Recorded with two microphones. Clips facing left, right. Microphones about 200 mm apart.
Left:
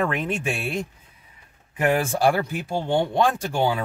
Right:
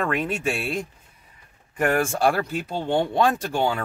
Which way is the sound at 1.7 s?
10° left (ahead or behind).